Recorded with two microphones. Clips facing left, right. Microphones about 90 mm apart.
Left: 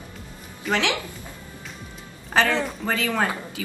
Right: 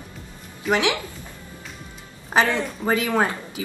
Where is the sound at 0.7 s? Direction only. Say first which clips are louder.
Right 3 dB; 15° right (ahead or behind).